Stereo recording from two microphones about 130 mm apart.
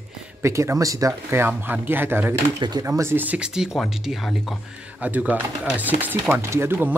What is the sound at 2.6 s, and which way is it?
Speech, 30° right (ahead or behind).